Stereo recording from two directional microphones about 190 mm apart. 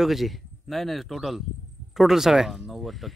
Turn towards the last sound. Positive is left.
turn(degrees=0)  # may be behind; listen again after turning